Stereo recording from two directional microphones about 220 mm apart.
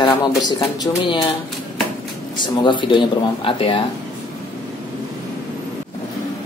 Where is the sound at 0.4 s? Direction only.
20° left (ahead or behind).